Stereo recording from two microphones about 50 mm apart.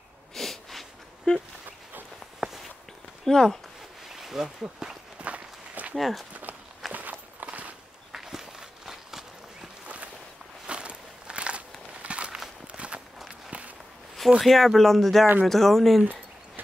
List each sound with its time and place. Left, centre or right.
0.3 s snort: centre
1.3 s speech: left
2.4 s walk: centre
3.3 s speech: centre
4.1 s a sound: centre
5.2 s walk: right
5.9 s speech: centre
6.5 s walk: right
8.1 s walk: centre
10.7 s walk: right
14.4 s speech: centre
16.0 s a sound: right